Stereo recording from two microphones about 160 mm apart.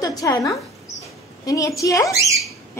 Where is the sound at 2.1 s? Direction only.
20° right (ahead or behind).